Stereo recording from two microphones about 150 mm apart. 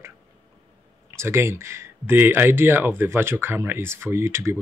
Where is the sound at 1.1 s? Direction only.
15° right (ahead or behind).